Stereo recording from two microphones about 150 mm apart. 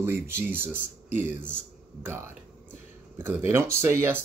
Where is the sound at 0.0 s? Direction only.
15° right (ahead or behind).